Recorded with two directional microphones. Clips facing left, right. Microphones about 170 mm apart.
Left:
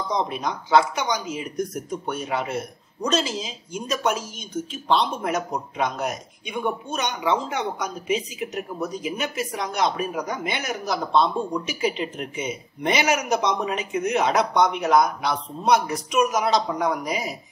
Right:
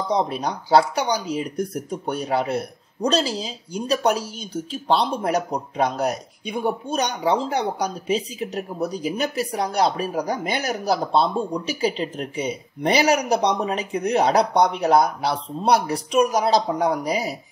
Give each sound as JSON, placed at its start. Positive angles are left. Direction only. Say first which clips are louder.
{"t": 0.1, "sound": "speech", "louder": "right 3 dB", "side_deg": -35}